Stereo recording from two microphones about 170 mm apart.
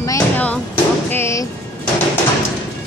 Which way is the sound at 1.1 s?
15° left (ahead or behind).